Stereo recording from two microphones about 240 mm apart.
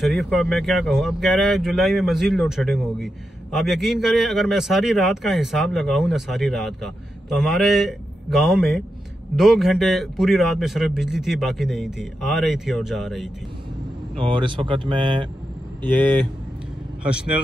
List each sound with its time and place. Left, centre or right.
0.0 s a man's voice: centre
14.3 s speech: centre
17.0 s a man's voice: centre